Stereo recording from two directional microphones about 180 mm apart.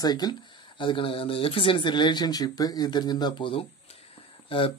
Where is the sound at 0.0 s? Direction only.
20° left (ahead or behind).